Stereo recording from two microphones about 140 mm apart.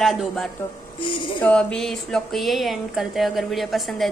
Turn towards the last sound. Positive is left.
turn(degrees=0)  # may be behind; listen again after turning